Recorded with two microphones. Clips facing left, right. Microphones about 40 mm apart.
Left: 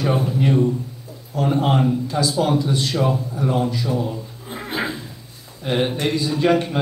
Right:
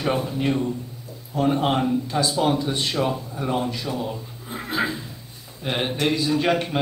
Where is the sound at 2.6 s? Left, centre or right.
Right.